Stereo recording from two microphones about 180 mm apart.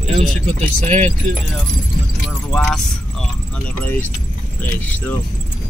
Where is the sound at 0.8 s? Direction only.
40° right (ahead or behind).